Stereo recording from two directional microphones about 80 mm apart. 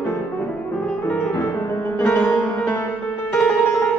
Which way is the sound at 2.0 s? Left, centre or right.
Left.